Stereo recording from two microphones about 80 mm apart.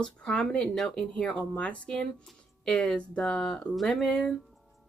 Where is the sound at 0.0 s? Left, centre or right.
Centre.